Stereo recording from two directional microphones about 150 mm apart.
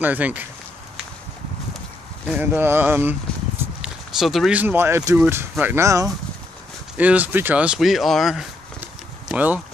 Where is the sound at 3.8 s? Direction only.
Centre (ahead or behind).